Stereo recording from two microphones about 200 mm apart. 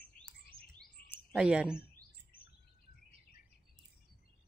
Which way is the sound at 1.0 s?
50° left (ahead or behind).